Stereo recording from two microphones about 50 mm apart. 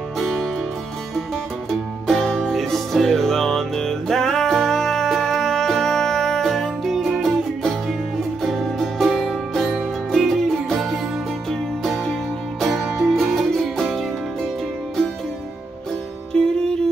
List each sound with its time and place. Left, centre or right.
0.2 s music: centre
2.2 s music: centre
16.3 s music: centre